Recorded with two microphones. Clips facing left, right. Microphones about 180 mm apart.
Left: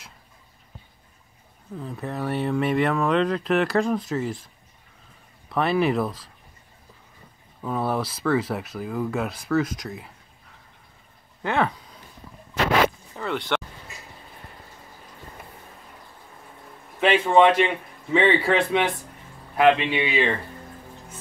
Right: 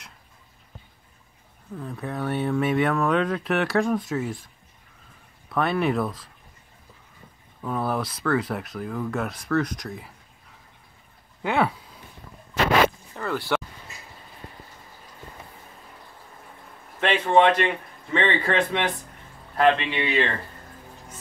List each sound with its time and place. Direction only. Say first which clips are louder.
1.8 s speech: even; centre (ahead or behind)
5.5 s speech: left 2 dB; centre (ahead or behind)
7.6 s speech: left 1 dB; centre (ahead or behind)
11.4 s speech: even; 10° right (ahead or behind)
13.1 s speech: even; centre (ahead or behind)
17.0 s speech: left 2 dB; 5° left (ahead or behind)